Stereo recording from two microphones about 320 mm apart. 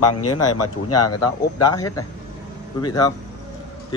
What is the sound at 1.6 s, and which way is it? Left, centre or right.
A man's voice, centre.